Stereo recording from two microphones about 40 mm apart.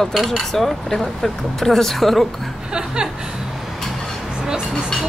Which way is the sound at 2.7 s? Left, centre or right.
Centre.